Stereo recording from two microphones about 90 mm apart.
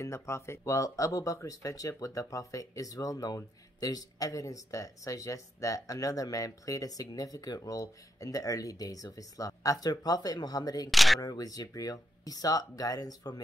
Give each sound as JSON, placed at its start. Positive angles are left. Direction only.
{"t": 0.0, "sound": "speech", "side_deg": 30}
{"t": 10.9, "sound": "speech", "side_deg": 0}
{"t": 11.1, "sound": "speech", "side_deg": 45}